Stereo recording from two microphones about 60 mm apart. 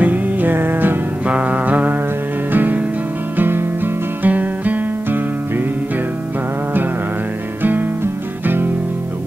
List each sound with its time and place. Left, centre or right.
0.0 s music: right
1.2 s music: right
7.6 s music: right